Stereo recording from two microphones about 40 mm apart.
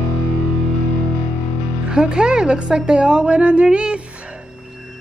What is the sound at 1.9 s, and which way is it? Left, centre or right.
Speech, centre.